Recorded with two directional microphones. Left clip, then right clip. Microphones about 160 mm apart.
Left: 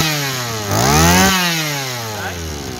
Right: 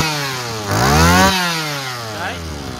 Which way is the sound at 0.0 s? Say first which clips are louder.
Left 1 dB; 10° left (ahead or behind).